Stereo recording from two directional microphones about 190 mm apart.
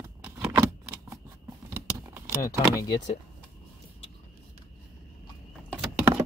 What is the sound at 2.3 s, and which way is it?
Speech, 20° left (ahead or behind).